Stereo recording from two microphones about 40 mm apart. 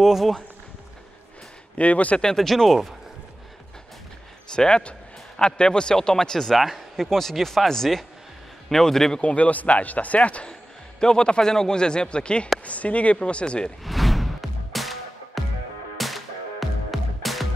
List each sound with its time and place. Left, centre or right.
1.8 s speech: left
2.3 s speech: centre
4.6 s a man's voice: left
6.5 s speech: centre
9.2 s speech: left
11.0 s a man's voice: centre
12.6 s speech: left
13.8 s music: centre